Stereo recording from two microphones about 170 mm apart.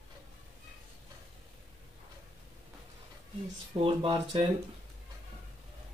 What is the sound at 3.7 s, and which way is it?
Speech, 25° right (ahead or behind).